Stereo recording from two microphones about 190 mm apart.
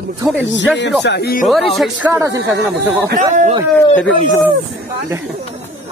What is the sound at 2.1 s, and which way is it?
Speech, 15° right (ahead or behind).